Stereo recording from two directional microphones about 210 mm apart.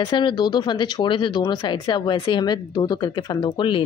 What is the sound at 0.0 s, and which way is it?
Speech, 20° left (ahead or behind).